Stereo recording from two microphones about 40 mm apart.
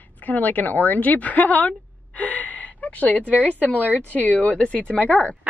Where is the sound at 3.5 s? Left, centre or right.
Left.